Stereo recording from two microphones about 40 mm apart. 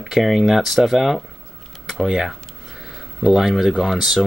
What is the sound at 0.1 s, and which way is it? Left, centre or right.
Speech, centre.